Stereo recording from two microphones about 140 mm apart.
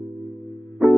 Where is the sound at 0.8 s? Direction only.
Centre (ahead or behind).